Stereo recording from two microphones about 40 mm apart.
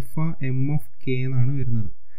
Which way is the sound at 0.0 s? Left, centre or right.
Left.